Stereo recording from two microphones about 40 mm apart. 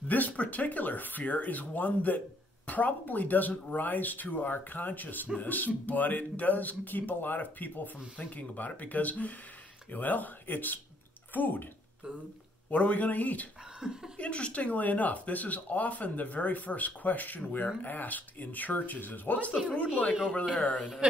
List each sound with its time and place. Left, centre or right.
0.1 s speech: left
12.7 s speech: left
13.7 s a sound: centre
14.1 s speech: left
19.7 s speech: left